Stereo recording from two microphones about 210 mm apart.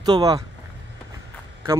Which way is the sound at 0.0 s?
20° right (ahead or behind).